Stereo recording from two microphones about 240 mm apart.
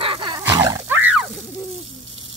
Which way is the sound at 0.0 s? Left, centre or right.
Right.